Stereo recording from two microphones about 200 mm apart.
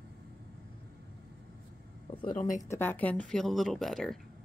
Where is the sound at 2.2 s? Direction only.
40° left (ahead or behind).